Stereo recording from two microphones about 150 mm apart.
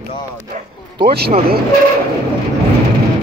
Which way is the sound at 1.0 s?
90° right.